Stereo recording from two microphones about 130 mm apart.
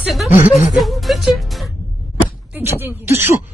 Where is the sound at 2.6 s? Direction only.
15° right (ahead or behind).